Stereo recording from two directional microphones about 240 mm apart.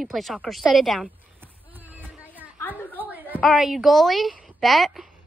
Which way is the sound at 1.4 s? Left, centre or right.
Centre.